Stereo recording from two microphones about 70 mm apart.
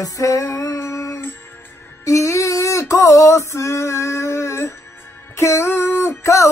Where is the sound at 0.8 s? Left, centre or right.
Left.